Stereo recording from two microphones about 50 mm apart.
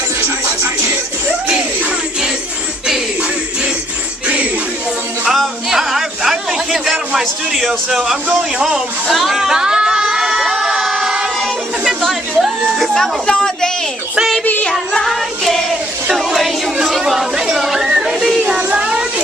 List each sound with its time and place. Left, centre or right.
0.2 s music: right
5.2 s a sound: centre
7.2 s a man's voice: centre
9.1 s crowd: centre
11.8 s a sound: centre
12.9 s child singing: centre
14.4 s music: left
14.7 s child singing: centre
16.1 s speech: centre
17.0 s a sound: centre
18.5 s music: centre